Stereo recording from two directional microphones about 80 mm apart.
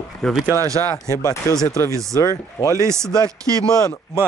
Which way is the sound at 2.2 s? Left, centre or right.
Left.